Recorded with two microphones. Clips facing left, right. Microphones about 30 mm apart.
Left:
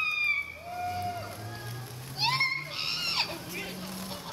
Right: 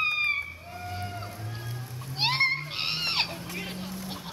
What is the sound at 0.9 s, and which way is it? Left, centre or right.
Music, centre.